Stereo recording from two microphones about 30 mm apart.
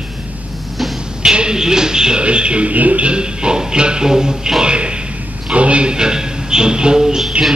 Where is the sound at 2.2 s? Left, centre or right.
Right.